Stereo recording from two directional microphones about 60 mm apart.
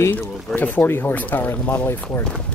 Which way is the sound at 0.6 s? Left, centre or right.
Left.